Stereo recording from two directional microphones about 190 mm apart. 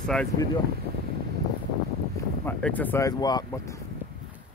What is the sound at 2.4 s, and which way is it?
Speech, 10° left (ahead or behind).